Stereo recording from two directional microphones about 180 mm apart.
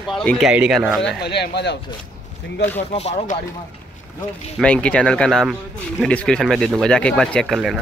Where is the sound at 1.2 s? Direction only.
70° left (ahead or behind).